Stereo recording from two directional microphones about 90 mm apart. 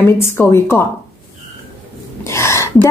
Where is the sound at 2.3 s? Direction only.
30° left (ahead or behind).